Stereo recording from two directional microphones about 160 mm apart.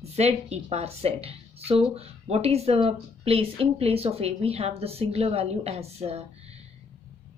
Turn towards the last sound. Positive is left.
turn(degrees=-40)  # may be behind; listen again after turning